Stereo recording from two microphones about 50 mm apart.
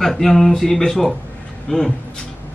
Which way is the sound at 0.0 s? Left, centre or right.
Centre.